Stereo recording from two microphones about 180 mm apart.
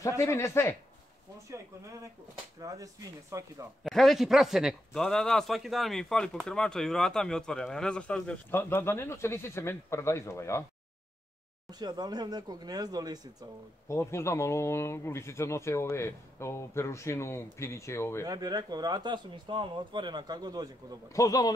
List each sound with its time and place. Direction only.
0.0 s speech: 15° left (ahead or behind)
2.6 s speech: 20° right (ahead or behind)
3.8 s a man's voice: centre (ahead or behind)
11.8 s speech: 25° right (ahead or behind)
13.8 s speech: 15° left (ahead or behind)
18.2 s speech: 20° right (ahead or behind)
21.1 s a man's voice: 20° left (ahead or behind)